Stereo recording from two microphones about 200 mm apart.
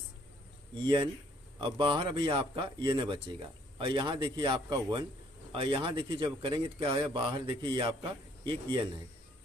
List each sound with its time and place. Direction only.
0.8 s speech: 20° right (ahead or behind)